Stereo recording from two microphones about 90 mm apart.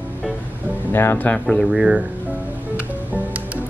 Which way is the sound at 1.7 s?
10° right (ahead or behind).